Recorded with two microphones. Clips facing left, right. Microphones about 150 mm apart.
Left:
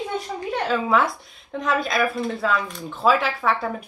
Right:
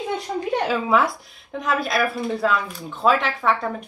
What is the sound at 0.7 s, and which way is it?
Speech, centre (ahead or behind).